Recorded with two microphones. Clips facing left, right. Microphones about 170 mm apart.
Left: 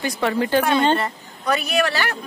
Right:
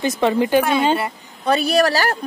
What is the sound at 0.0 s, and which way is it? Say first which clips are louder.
Speech: right 4 dB; 20° right (ahead or behind).